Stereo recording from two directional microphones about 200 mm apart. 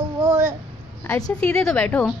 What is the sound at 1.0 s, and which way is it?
A woman's voice, 15° left (ahead or behind).